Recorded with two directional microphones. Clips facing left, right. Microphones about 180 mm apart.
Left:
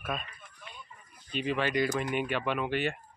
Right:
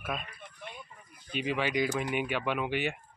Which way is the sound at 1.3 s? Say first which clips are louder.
Left 1 dB; 10° right (ahead or behind).